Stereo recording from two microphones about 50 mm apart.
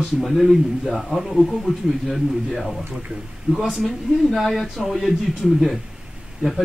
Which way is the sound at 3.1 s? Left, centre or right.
Right.